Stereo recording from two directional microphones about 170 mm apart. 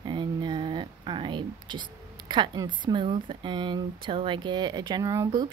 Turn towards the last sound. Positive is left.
turn(degrees=-20)  # may be behind; listen again after turning